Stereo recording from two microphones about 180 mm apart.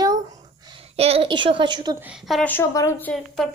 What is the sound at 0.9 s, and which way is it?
Speech, 35° right (ahead or behind).